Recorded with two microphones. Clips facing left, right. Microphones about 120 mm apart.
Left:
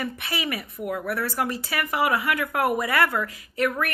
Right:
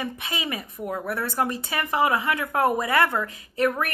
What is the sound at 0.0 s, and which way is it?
A woman's voice, 20° right (ahead or behind).